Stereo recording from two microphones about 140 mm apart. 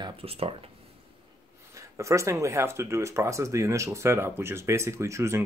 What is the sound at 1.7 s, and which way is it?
Speech, 20° right (ahead or behind).